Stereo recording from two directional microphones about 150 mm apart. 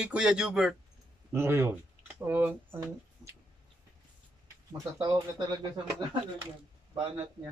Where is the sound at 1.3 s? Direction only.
15° right (ahead or behind).